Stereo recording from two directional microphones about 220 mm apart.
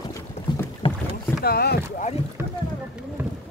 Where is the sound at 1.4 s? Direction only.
45° left (ahead or behind).